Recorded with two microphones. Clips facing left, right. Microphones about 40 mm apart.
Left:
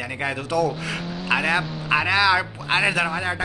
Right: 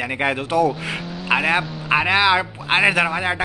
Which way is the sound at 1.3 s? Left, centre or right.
Centre.